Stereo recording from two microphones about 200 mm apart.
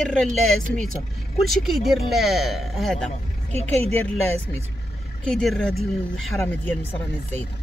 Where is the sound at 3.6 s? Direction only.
30° right (ahead or behind).